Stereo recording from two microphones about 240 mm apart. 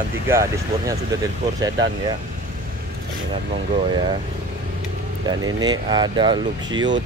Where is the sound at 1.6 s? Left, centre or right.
Centre.